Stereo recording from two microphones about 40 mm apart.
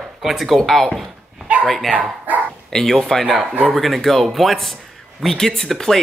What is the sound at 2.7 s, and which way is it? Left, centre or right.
Speech, centre.